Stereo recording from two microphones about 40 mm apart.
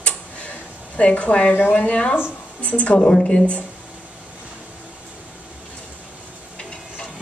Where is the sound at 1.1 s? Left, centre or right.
Left.